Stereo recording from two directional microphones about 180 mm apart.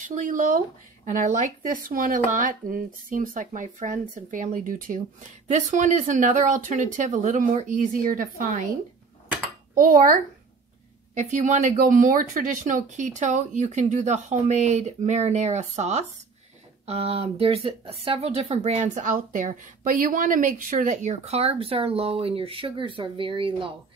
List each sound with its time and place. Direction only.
0.1 s speech: 45° right (ahead or behind)
9.8 s speech: 50° right (ahead or behind)
11.1 s speech: 40° right (ahead or behind)